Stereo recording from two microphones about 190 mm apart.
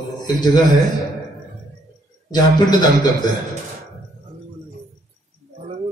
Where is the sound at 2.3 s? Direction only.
20° left (ahead or behind).